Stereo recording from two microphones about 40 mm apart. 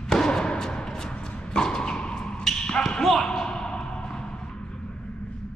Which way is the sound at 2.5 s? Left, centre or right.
Centre.